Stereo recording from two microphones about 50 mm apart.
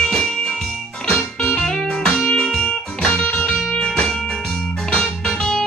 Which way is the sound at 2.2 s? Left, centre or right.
Centre.